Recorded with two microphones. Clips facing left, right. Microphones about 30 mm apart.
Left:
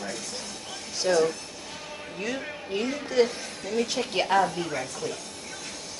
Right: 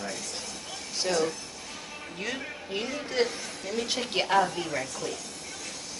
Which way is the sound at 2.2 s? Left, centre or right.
Centre.